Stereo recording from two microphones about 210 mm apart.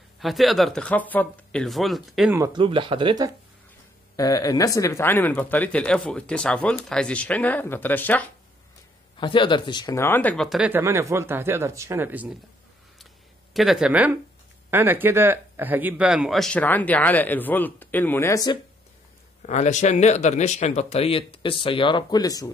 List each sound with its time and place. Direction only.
0.2 s speech: centre (ahead or behind)
2.3 s speech: 20° right (ahead or behind)
4.2 s speech: 15° left (ahead or behind)
9.2 s speech: 25° left (ahead or behind); by 12.4 s 10° right (ahead or behind)
13.0 s a sound: centre (ahead or behind)
14.7 s speech: 10° right (ahead or behind); by 18.6 s 15° left (ahead or behind)
19.4 s speech: 35° left (ahead or behind); by 22.5 s 15° left (ahead or behind)